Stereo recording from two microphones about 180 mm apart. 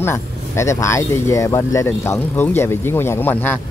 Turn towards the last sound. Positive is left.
turn(degrees=10)  # may be behind; listen again after turning